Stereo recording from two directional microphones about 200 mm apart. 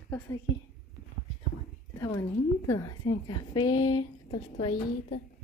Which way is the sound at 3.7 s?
20° left (ahead or behind).